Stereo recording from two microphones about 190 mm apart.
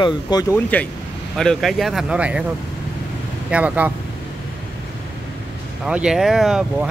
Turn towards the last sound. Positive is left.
turn(degrees=-5)  # may be behind; listen again after turning